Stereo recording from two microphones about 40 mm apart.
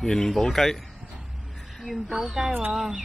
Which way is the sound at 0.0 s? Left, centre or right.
Centre.